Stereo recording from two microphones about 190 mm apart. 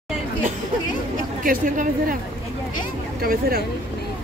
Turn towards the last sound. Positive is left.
turn(degrees=-55)  # may be behind; listen again after turning